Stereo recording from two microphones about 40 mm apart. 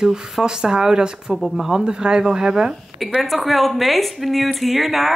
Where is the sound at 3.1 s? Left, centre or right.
Centre.